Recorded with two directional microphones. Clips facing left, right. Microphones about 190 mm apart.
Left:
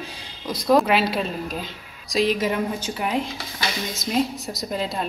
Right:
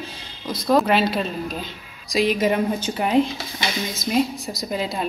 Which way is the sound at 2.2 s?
15° right (ahead or behind).